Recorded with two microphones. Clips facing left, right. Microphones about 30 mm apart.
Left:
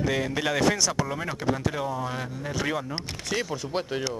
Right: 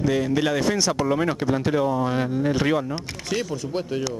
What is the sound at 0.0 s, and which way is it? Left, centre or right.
Speech, centre.